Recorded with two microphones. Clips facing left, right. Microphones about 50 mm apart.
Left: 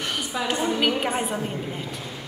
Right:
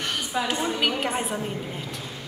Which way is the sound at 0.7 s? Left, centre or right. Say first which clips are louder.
Left 2 dB; centre.